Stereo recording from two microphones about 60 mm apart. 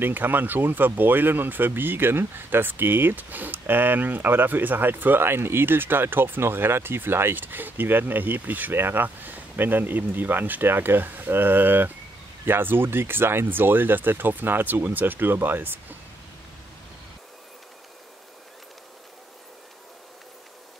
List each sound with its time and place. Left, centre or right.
0.0 s speech: right